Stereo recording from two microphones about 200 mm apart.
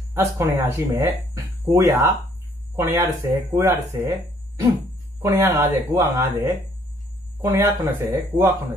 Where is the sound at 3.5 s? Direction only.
15° right (ahead or behind).